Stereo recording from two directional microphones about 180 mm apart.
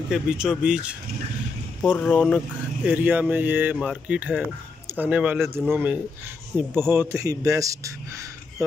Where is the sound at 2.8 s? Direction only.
10° right (ahead or behind).